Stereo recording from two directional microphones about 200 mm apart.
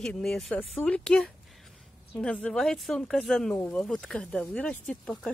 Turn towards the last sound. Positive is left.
turn(degrees=5)  # may be behind; listen again after turning